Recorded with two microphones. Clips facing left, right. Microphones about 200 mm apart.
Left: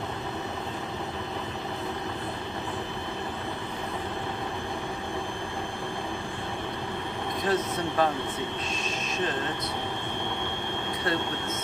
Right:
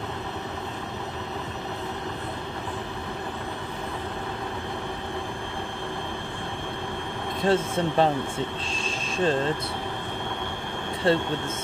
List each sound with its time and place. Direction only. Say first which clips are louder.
7.4 s speech: right 5 dB; 25° right (ahead or behind)
8.8 s a sound: right 7 dB; 30° right (ahead or behind)
11.1 s speech: right 7 dB; 25° right (ahead or behind)